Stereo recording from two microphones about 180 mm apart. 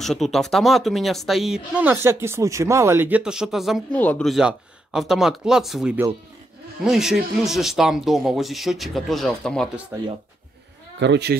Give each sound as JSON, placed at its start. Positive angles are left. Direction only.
{"t": 0.0, "sound": "speech", "side_deg": 0}
{"t": 11.0, "sound": "speech", "side_deg": -70}